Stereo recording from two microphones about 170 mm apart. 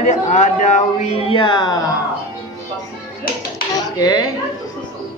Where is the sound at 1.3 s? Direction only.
25° left (ahead or behind).